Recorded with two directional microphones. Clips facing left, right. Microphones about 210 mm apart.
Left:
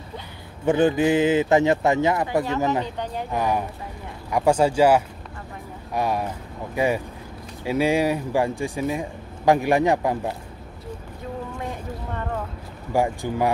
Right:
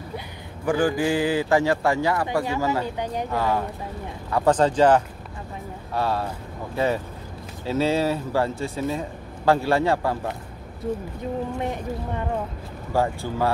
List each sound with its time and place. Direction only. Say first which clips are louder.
0.7 s a man's voice: left 3 dB; 25° left (ahead or behind)
11.6 s speech: right 4 dB; 15° right (ahead or behind)
12.9 s a man's voice: left 1 dB; 15° left (ahead or behind)